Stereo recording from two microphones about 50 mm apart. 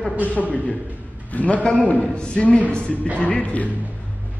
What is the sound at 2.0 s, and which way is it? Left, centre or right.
A man's voice, centre.